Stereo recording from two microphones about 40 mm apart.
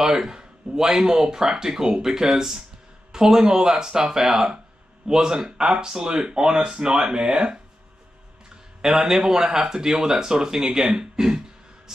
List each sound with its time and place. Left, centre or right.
0.0 s speech: centre
8.8 s speech: centre